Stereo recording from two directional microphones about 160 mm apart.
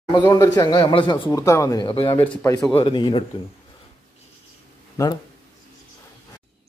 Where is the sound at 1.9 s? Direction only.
35° left (ahead or behind).